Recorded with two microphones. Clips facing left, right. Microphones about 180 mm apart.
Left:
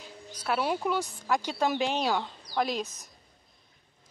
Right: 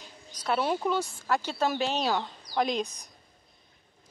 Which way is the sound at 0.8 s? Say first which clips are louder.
Right 1 dB; 10° left (ahead or behind).